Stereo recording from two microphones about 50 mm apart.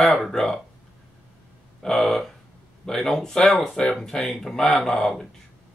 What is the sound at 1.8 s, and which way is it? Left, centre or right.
Speech, centre.